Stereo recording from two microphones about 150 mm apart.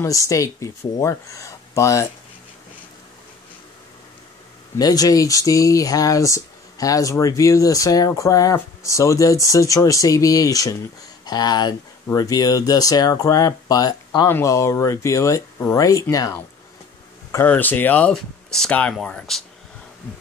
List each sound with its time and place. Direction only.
0.0 s speech: 20° left (ahead or behind)
4.7 s speech: 25° left (ahead or behind); by 19.4 s 5° left (ahead or behind)